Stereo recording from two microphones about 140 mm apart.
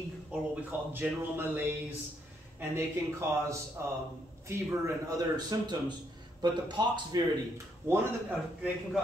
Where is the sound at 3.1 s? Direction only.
20° right (ahead or behind).